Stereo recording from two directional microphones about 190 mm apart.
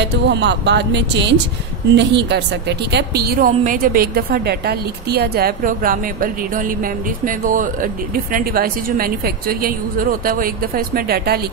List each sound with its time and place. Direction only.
0.0 s a woman's voice: 65° right (ahead or behind)